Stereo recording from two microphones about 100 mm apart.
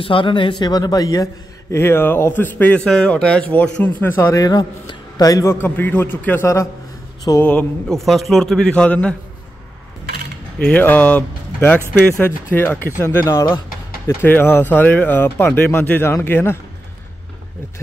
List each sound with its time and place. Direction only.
0.0 s a man's voice: 60° left (ahead or behind); by 2.8 s 20° left (ahead or behind)
2.8 s a man's voice: 5° left (ahead or behind)
4.0 s a man's voice: 25° left (ahead or behind)
5.5 s a man's voice: 20° left (ahead or behind); by 7.4 s 40° left (ahead or behind)
7.9 s a man's voice: centre (ahead or behind)
10.6 s speech: 15° left (ahead or behind)